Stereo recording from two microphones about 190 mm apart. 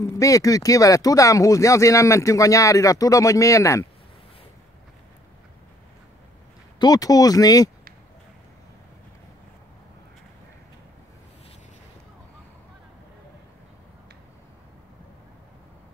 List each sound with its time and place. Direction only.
0.0 s speech: 15° left (ahead or behind)
6.8 s speech: 20° left (ahead or behind)